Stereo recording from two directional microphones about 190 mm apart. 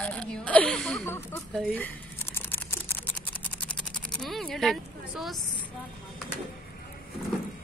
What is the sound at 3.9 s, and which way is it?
Speech, centre (ahead or behind).